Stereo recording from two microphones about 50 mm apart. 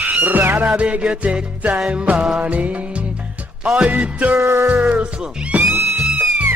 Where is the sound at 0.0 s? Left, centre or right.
Right.